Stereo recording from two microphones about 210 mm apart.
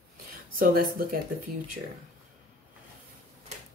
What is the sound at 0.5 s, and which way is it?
Speech, 45° right (ahead or behind).